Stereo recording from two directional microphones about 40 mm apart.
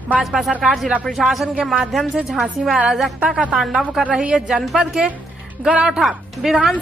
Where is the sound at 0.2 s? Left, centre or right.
Centre.